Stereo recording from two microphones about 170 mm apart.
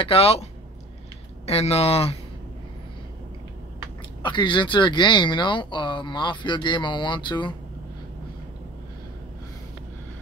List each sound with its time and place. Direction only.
0.0 s speech: 35° left (ahead or behind)
4.2 s speech: 30° left (ahead or behind)